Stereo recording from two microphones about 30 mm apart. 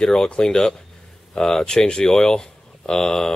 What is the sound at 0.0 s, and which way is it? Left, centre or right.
Speech, left.